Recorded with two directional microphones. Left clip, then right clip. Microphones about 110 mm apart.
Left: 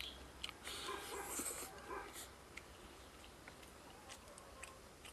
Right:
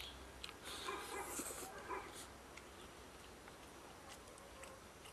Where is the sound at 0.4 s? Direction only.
5° left (ahead or behind).